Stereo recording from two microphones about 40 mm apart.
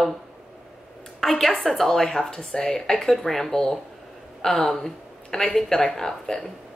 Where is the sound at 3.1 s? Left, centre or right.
Centre.